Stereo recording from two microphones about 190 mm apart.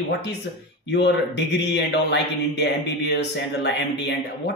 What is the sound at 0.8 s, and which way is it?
A man's voice, 65° left (ahead or behind).